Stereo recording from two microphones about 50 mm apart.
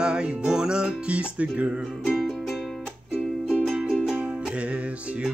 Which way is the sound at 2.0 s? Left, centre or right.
Centre.